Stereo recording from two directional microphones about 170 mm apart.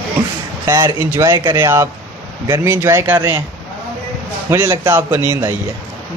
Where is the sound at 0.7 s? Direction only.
20° right (ahead or behind).